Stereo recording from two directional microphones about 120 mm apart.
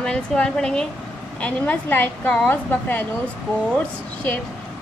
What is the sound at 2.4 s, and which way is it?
Speech, 15° left (ahead or behind).